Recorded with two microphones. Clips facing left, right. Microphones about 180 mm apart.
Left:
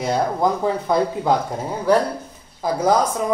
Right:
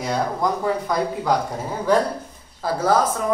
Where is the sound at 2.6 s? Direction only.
15° left (ahead or behind).